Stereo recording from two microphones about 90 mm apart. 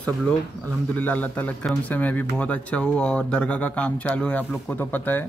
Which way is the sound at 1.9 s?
20° left (ahead or behind).